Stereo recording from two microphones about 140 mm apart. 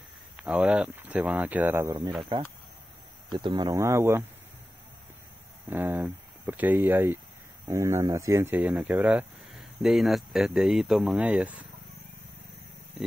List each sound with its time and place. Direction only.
0.4 s speech: 10° right (ahead or behind)
3.3 s speech: 35° right (ahead or behind)
3.7 s speech: 20° right (ahead or behind)
5.7 s speech: 15° right (ahead or behind)